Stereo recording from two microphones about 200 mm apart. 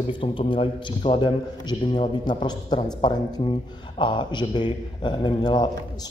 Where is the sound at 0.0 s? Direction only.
25° left (ahead or behind).